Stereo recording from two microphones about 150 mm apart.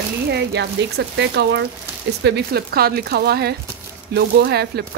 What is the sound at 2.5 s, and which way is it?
Speech, 90° right.